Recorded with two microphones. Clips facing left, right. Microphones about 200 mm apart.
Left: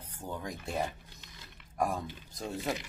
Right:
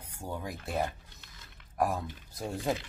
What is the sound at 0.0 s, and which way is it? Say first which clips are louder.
A man's voice: right 1 dB; 10° right (ahead or behind).